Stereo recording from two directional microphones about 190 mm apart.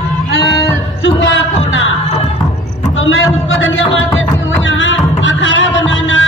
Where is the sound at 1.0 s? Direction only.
75° left (ahead or behind).